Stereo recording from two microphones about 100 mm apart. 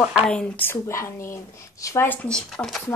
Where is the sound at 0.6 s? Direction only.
25° left (ahead or behind).